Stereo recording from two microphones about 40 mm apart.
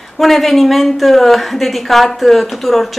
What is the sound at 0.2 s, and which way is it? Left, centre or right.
A woman's voice, centre.